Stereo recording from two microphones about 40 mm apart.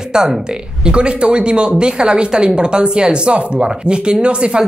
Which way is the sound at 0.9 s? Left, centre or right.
Right.